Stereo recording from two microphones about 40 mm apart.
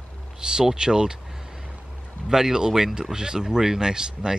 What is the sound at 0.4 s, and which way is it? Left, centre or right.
Speech, centre.